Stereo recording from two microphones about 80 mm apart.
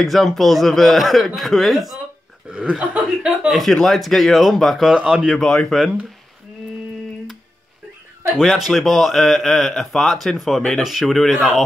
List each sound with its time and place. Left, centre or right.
0.0 s speech: centre
2.5 s speech: centre
3.4 s speech: centre
4.9 s speech: centre
5.4 s speech: centre
8.4 s speech: centre